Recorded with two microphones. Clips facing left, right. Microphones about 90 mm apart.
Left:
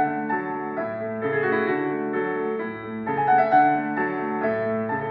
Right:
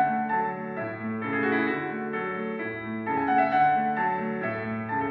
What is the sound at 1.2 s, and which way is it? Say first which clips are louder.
Music: left 3 dB; 30° left (ahead or behind).